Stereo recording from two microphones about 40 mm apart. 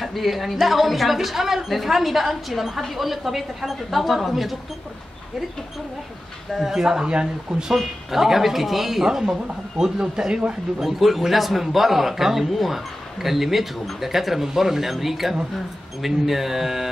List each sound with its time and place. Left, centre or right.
0.0 s speech: centre
6.5 s speech: centre
7.7 s speech: centre; by 10.9 s right
10.9 s speech: centre